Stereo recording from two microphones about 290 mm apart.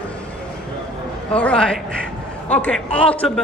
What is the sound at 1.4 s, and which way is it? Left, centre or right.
Speech, centre.